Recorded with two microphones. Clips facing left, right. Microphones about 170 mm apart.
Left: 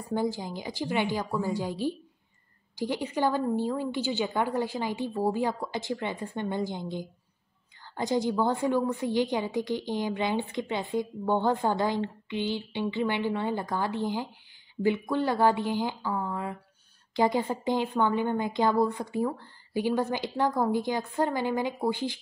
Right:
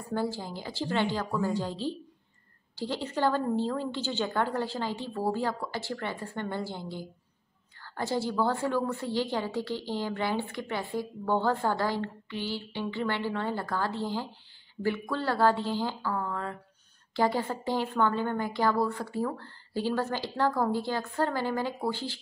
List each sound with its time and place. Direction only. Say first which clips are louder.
0.1 s a woman's voice: left 2 dB; 15° left (ahead or behind)